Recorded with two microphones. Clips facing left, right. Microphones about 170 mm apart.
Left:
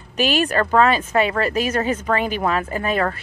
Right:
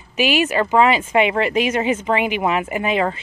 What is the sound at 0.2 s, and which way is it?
A woman's voice, 10° right (ahead or behind).